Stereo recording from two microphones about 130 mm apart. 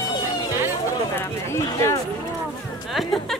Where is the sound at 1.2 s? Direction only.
20° left (ahead or behind).